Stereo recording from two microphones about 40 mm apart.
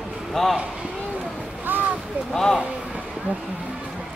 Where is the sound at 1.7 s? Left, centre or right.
Right.